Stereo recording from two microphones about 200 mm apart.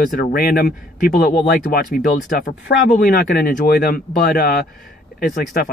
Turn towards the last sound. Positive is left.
turn(degrees=45)  # may be behind; listen again after turning